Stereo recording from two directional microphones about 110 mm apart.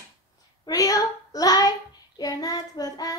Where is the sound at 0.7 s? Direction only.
30° left (ahead or behind).